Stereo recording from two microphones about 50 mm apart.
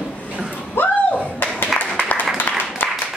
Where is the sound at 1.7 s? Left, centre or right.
Centre.